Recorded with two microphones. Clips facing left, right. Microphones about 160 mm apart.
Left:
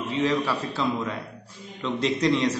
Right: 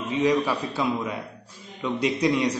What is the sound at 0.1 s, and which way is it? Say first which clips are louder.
A man's voice: right 3 dB; 15° right (ahead or behind).